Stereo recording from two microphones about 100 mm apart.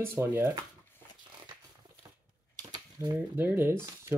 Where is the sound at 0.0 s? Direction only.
25° right (ahead or behind).